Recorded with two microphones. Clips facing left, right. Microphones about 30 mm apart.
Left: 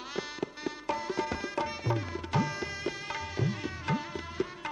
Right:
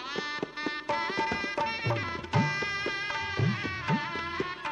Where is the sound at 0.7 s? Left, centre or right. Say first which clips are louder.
Right 3 dB; right.